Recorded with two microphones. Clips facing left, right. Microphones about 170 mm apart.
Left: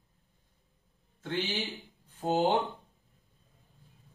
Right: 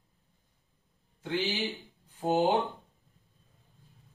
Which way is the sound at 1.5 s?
Centre (ahead or behind).